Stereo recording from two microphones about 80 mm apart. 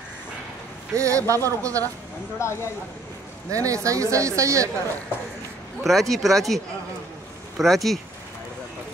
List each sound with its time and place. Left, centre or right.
0.9 s speech: right
2.4 s speech: left
3.4 s speech: right
5.9 s speech: centre